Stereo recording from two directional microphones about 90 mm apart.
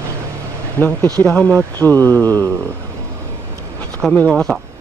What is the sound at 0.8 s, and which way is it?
Speech, 20° left (ahead or behind).